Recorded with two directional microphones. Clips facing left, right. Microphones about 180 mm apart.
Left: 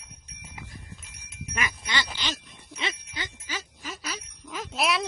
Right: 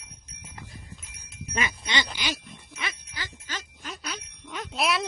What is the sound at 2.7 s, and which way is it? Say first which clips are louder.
Jingle: left 3 dB; 25° left (ahead or behind).